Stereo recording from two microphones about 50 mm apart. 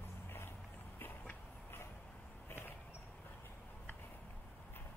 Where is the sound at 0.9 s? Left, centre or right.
Left.